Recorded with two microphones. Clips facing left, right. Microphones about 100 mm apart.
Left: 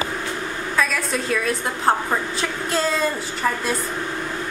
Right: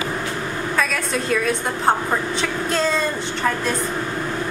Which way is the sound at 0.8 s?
Centre (ahead or behind).